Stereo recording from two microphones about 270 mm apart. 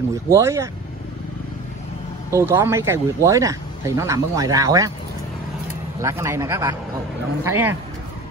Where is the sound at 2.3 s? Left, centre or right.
Centre.